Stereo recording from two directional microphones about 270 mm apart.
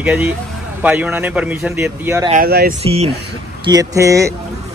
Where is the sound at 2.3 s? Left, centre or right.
Right.